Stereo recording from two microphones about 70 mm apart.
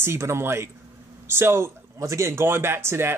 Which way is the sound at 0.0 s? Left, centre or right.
Right.